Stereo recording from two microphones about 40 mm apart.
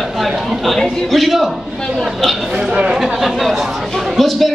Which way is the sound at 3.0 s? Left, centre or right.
Centre.